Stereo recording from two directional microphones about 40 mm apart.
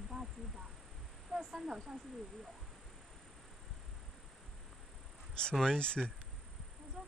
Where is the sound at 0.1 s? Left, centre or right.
Centre.